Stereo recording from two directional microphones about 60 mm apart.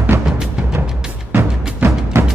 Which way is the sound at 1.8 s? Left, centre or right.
Right.